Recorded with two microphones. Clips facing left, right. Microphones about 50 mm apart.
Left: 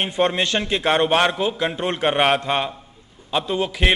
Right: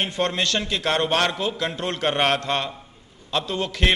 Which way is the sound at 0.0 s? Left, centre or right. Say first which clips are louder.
Left 3 dB; centre.